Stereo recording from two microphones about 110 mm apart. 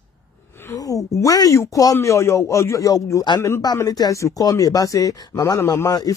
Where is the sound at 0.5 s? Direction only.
25° left (ahead or behind).